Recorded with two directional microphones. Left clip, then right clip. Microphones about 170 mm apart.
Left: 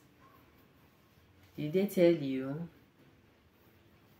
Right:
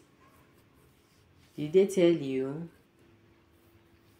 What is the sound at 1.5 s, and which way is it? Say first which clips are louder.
Speech: right 5 dB; 15° right (ahead or behind).